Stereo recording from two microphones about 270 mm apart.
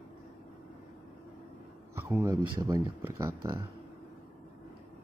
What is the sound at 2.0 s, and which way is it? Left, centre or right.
Speech, centre.